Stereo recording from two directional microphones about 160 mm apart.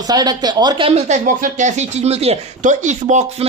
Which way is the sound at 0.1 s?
25° right (ahead or behind).